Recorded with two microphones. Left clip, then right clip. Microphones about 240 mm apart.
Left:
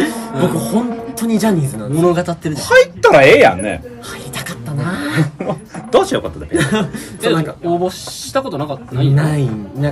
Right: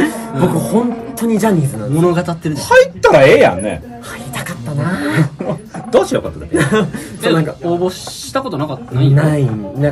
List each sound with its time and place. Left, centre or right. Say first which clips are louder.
0.0 s music: right 1 dB; centre
2.0 s speech: left 1 dB; centre
2.8 s speech: even; centre
4.4 s dog: right 3 dB; centre
5.9 s speech: even; centre
6.5 s speech: right 3 dB; centre